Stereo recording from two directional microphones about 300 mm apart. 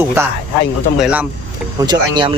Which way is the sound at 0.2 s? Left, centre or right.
Centre.